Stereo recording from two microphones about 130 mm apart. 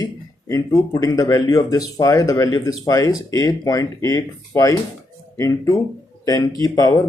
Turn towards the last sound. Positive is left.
turn(degrees=30)  # may be behind; listen again after turning